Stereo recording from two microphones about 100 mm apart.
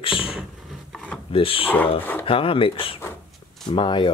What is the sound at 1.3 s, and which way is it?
Speech, 65° left (ahead or behind).